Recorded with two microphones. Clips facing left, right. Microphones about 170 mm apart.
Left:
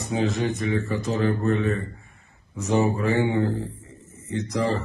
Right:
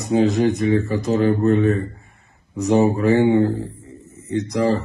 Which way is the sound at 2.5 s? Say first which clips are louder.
Right 6 dB; 35° right (ahead or behind).